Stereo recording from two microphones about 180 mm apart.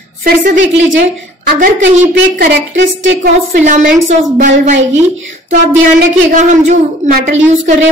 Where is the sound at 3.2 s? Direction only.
45° right (ahead or behind).